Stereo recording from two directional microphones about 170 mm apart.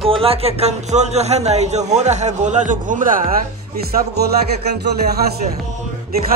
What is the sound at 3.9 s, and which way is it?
Music, 65° right (ahead or behind).